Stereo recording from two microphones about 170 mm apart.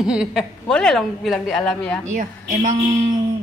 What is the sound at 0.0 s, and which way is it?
A woman's voice, 5° right (ahead or behind).